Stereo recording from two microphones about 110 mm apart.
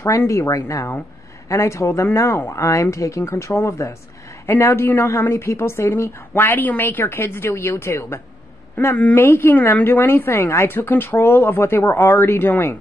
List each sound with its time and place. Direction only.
0.0 s a woman's voice: 25° left (ahead or behind)